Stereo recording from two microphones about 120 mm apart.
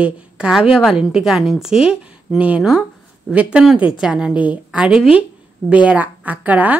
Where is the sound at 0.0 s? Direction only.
5° right (ahead or behind).